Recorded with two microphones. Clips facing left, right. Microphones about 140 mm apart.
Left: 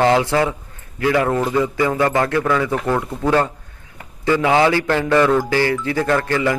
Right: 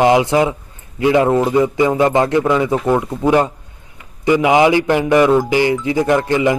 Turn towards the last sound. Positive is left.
turn(degrees=-20)  # may be behind; listen again after turning